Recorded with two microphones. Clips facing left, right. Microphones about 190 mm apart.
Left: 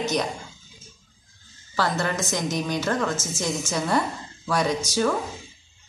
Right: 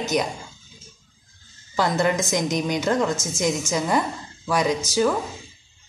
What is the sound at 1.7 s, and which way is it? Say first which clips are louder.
A woman's voice: right 4 dB; 15° right (ahead or behind).